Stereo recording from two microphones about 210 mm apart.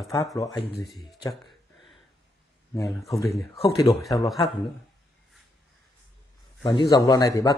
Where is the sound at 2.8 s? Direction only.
Centre (ahead or behind).